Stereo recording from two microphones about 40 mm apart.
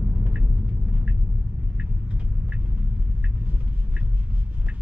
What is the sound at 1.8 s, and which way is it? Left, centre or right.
Vehicle, right.